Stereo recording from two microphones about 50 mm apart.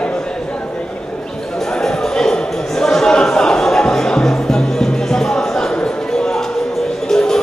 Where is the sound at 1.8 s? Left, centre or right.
Centre.